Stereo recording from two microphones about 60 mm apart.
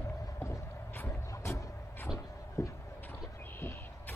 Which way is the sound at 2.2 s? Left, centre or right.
Left.